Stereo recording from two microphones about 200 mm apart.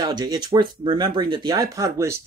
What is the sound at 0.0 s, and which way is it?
Speech, 20° right (ahead or behind).